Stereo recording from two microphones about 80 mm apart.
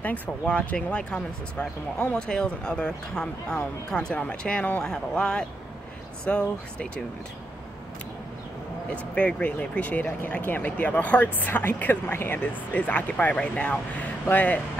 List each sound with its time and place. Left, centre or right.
0.0 s speech: centre
9.1 s speech: centre